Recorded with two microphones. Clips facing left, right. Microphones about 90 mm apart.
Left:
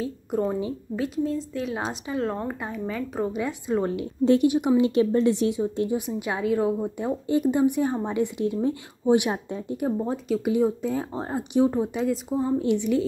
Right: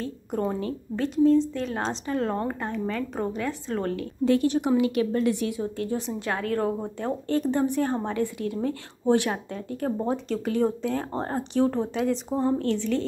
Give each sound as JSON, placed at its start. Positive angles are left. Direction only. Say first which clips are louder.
{"t": 0.0, "sound": "speech", "louder": "left 2 dB", "side_deg": 5}
{"t": 4.7, "sound": "speech", "louder": "left 3 dB", "side_deg": 25}
{"t": 9.9, "sound": "speech", "louder": "left 1 dB", "side_deg": 0}
{"t": 11.5, "sound": "speech", "louder": "left 2 dB", "side_deg": 15}